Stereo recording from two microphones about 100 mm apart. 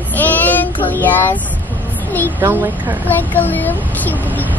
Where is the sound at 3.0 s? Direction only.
20° left (ahead or behind).